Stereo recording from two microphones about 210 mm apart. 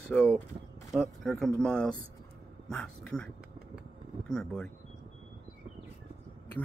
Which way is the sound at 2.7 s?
5° left (ahead or behind).